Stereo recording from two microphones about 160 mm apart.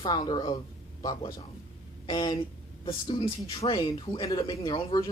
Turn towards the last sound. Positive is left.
turn(degrees=30)  # may be behind; listen again after turning